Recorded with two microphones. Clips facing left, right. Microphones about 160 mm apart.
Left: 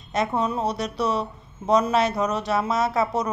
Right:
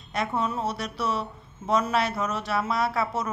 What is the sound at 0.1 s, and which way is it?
Speech, 20° left (ahead or behind).